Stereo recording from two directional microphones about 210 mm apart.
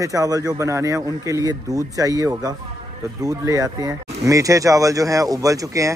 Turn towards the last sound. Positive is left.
turn(degrees=-15)  # may be behind; listen again after turning